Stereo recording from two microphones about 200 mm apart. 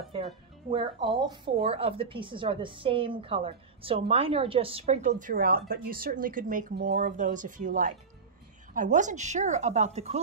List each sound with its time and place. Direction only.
0.7 s a woman's voice: 25° right (ahead or behind)